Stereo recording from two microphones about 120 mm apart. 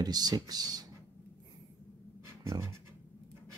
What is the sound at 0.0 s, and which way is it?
Speech, 35° right (ahead or behind).